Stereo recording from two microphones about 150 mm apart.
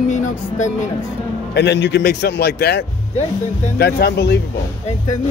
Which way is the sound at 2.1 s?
90° left.